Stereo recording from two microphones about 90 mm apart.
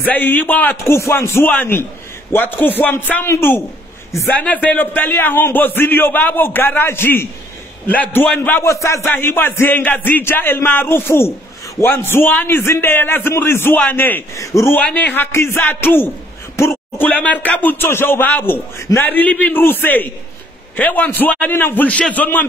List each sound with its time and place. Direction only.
0.0 s a man's voice: 20° left (ahead or behind)
4.4 s a man's voice: 15° left (ahead or behind); by 9.0 s 35° left (ahead or behind)
9.0 s a man's voice: 25° left (ahead or behind)
14.3 s a man's voice: 35° left (ahead or behind)
14.8 s a man's voice: 20° left (ahead or behind)
17.1 s a man's voice: 15° left (ahead or behind)